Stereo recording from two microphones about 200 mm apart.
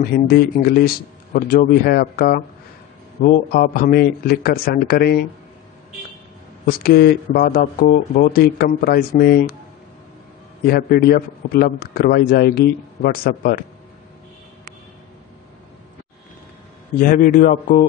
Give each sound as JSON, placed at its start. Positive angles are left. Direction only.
{"t": 0.0, "sound": "speech", "side_deg": 50}
{"t": 6.6, "sound": "speech", "side_deg": 50}
{"t": 10.7, "sound": "speech", "side_deg": 50}
{"t": 17.0, "sound": "speech", "side_deg": 45}